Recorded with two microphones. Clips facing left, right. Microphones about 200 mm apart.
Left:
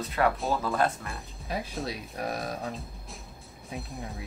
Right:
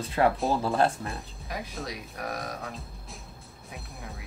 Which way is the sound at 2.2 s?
30° left (ahead or behind).